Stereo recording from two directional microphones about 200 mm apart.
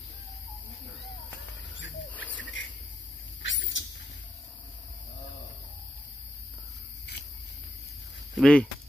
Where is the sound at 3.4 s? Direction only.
65° left (ahead or behind).